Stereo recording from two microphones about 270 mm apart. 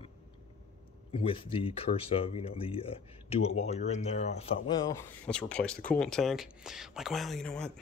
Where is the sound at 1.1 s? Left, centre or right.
Centre.